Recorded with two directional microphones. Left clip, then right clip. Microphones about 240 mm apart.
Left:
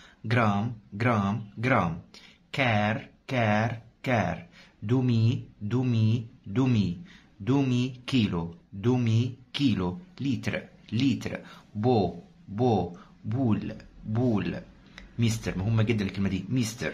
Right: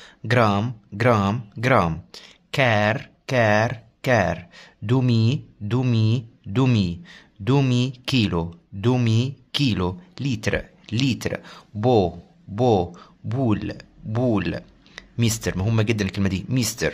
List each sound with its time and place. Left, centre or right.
0.0 s speech: right